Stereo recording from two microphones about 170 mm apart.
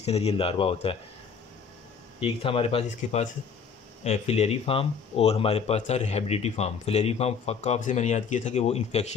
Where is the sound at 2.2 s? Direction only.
30° left (ahead or behind).